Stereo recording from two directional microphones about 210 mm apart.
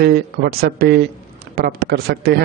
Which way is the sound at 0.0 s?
45° right (ahead or behind).